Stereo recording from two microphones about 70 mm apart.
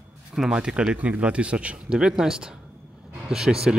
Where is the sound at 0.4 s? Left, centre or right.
Centre.